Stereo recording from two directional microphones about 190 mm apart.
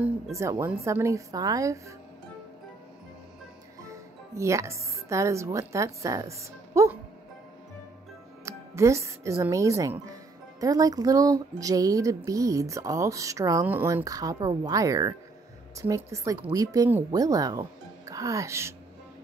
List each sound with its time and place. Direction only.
0.4 s music: 15° right (ahead or behind)
3.9 s speech: 15° right (ahead or behind)
8.5 s speech: 15° right (ahead or behind)
10.6 s music: 20° right (ahead or behind)